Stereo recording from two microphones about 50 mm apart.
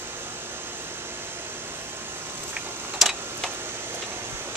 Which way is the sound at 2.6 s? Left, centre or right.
Right.